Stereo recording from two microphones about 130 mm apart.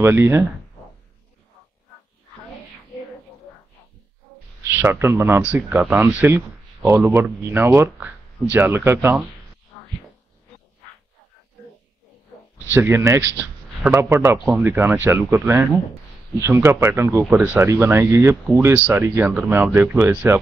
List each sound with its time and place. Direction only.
0.0 s speech: 20° right (ahead or behind)
4.6 s speech: 15° right (ahead or behind)
12.7 s a man's voice: 20° right (ahead or behind)